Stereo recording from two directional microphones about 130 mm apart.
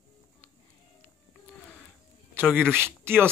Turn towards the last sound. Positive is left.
turn(degrees=-15)  # may be behind; listen again after turning